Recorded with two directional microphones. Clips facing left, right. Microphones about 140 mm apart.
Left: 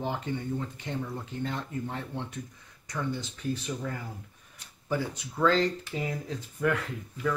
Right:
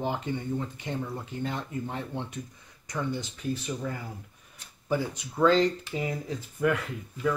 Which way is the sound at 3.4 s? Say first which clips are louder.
Even; 10° right (ahead or behind).